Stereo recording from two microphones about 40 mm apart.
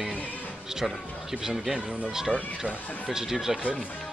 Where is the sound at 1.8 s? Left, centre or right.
Right.